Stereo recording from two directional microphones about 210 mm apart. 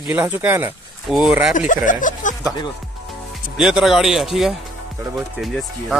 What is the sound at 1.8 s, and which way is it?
Speech, 40° left (ahead or behind).